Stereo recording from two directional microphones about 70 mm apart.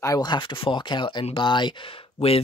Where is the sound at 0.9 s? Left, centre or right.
Left.